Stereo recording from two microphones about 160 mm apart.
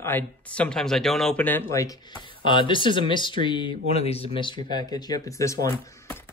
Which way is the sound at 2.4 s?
30° left (ahead or behind).